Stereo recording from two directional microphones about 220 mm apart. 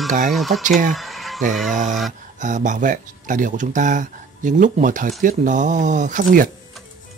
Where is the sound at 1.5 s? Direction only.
Centre (ahead or behind).